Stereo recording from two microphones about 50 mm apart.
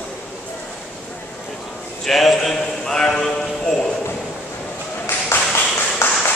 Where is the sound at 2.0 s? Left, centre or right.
Centre.